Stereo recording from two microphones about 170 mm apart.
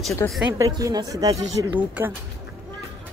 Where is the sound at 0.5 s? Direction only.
20° right (ahead or behind).